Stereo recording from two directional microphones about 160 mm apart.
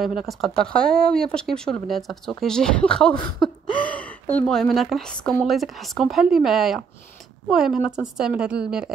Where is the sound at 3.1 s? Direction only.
30° left (ahead or behind).